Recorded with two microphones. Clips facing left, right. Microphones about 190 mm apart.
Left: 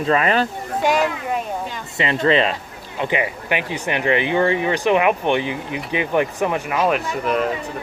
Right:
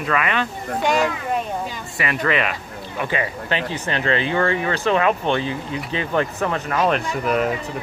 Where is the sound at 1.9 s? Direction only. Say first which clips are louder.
Left 5 dB; 25° left (ahead or behind); by 7.5 s centre (ahead or behind).